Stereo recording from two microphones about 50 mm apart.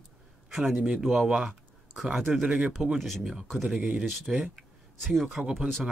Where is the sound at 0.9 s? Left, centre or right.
Centre.